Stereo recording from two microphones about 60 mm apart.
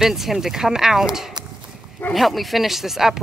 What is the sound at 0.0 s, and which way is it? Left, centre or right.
Speech, centre.